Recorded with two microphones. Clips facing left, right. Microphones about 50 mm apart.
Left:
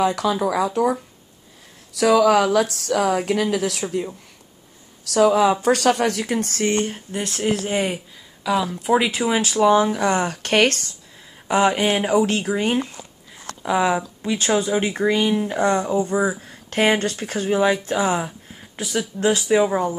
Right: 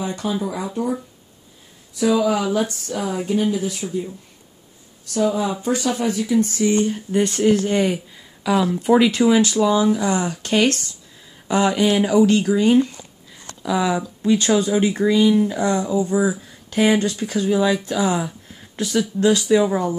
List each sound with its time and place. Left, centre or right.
0.0 s speech: left
2.0 s speech: left
5.0 s speech: left
7.1 s speech: centre
7.4 s speech: centre
8.5 s speech: centre
8.9 s speech: centre
9.4 s speech: left
9.8 s speech: left
11.4 s speech: left
14.8 s speech: left
18.8 s speech: centre
19.1 s speech: left